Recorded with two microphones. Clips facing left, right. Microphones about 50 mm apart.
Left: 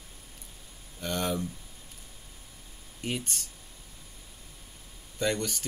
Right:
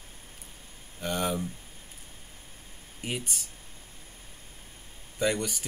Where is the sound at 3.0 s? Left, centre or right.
Centre.